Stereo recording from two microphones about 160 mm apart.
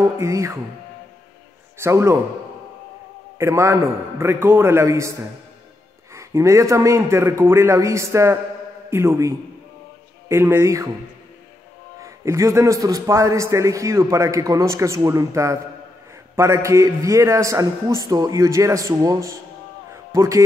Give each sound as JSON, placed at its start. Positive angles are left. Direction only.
{"t": 0.0, "sound": "a man's voice", "side_deg": -20}
{"t": 1.8, "sound": "a man's voice", "side_deg": -15}
{"t": 3.3, "sound": "a man's voice", "side_deg": -15}
{"t": 6.1, "sound": "a man's voice", "side_deg": -20}
{"t": 12.0, "sound": "a man's voice", "side_deg": -20}
{"t": 19.9, "sound": "music", "side_deg": -20}